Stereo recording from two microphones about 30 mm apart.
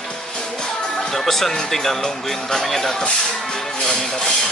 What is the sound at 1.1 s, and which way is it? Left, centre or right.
Speech, centre.